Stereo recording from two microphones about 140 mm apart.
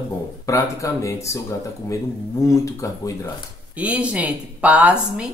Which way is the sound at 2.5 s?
25° left (ahead or behind).